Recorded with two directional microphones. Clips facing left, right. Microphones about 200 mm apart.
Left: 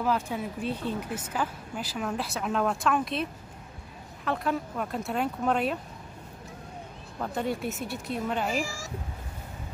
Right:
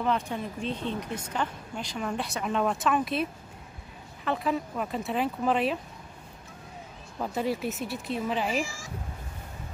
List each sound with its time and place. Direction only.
0.0 s speech: 5° left (ahead or behind)
7.2 s speech: 5° right (ahead or behind)
8.5 s speech: 40° left (ahead or behind)